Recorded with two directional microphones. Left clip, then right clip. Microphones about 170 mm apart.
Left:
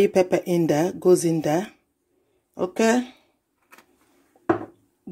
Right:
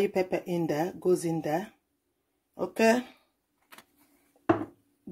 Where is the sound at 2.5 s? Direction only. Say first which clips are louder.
Left 3 dB; 20° left (ahead or behind).